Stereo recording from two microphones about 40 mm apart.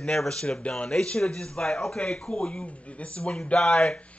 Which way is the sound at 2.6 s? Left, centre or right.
Left.